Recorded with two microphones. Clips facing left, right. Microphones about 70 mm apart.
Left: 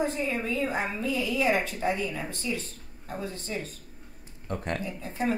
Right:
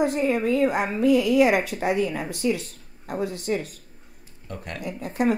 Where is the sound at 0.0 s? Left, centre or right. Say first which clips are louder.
Right 7 dB; right.